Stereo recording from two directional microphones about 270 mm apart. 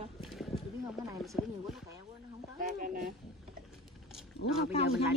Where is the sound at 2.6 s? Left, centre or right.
Right.